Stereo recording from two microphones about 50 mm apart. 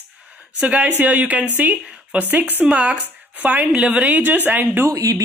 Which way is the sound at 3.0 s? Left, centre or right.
Right.